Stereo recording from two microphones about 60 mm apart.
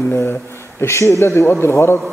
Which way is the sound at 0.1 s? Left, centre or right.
Left.